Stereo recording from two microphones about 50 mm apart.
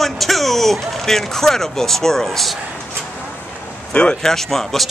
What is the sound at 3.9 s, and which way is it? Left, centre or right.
Speech, left.